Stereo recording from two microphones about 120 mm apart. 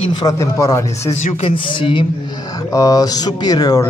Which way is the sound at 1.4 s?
45° left (ahead or behind).